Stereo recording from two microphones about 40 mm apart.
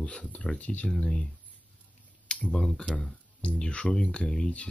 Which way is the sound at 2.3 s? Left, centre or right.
Left.